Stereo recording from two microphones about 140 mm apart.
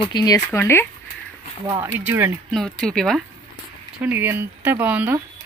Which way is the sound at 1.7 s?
15° right (ahead or behind).